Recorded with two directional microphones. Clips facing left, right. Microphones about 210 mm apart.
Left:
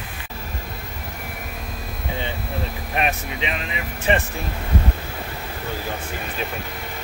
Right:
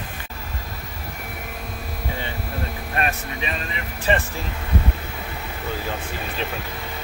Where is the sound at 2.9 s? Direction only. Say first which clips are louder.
Left 2 dB; 15° left (ahead or behind).